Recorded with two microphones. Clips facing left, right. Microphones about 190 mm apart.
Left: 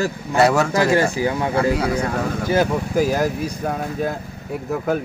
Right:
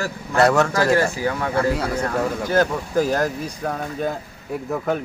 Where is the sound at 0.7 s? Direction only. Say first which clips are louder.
Left 1 dB; 20° left (ahead or behind).